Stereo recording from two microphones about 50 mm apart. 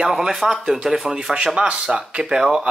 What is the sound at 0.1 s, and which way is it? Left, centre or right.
Speech, centre.